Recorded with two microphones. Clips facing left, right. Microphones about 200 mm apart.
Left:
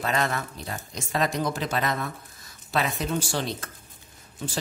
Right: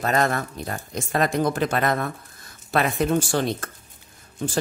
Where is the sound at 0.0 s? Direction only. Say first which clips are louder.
Right 5 dB; 45° right (ahead or behind).